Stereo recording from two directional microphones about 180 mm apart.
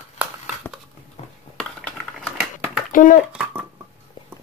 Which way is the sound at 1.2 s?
35° left (ahead or behind).